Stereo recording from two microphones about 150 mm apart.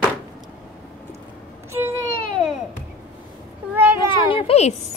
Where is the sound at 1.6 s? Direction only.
15° right (ahead or behind).